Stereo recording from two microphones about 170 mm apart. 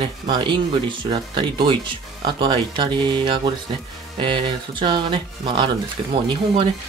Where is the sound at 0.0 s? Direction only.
30° right (ahead or behind).